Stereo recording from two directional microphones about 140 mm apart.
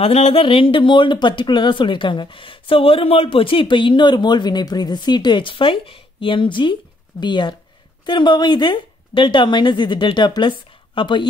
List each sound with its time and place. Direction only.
0.0 s speech: 45° left (ahead or behind)